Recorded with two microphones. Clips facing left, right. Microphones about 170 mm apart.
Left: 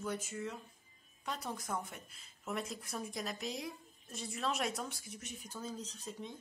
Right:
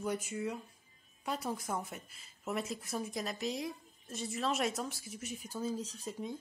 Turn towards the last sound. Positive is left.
turn(degrees=-10)  # may be behind; listen again after turning